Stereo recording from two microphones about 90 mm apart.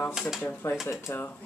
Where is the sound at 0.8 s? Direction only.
35° left (ahead or behind).